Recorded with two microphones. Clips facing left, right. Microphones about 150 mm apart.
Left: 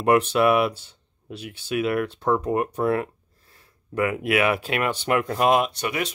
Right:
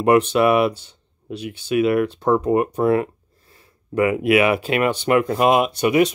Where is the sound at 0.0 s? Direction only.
Centre (ahead or behind).